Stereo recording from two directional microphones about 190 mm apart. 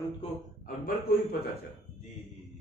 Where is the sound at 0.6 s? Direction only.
50° left (ahead or behind).